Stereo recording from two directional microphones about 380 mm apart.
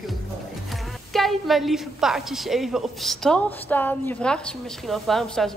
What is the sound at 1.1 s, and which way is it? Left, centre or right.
A woman's voice, centre.